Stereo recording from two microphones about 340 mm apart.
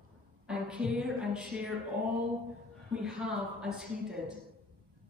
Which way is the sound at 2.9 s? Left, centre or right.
Centre.